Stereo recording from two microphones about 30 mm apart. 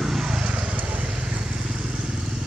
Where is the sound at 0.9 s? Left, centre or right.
Right.